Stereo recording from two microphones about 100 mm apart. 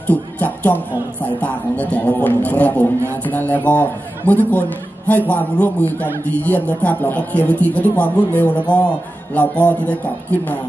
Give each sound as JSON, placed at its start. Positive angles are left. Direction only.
{"t": 0.0, "sound": "a man's voice", "side_deg": 15}